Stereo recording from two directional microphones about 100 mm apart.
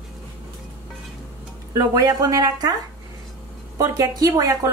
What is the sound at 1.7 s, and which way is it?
Speech, 40° right (ahead or behind).